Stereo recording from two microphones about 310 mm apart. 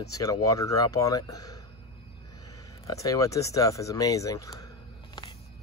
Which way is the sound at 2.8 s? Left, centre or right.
Centre.